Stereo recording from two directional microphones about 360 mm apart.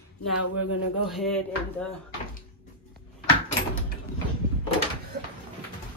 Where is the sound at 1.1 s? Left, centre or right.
Centre.